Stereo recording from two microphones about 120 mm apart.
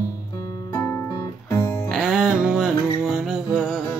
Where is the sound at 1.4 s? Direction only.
30° left (ahead or behind).